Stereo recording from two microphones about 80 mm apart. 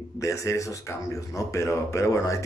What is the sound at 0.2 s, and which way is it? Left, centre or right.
Speech, left.